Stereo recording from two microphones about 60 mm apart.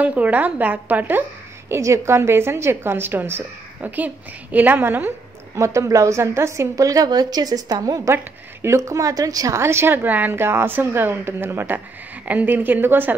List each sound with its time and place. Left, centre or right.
0.0 s a woman's voice: right
1.7 s a woman's voice: right
3.8 s a woman's voice: right
5.6 s a woman's voice: right
6.7 s a woman's voice: right
8.6 s speech: right
9.6 s a woman's voice: right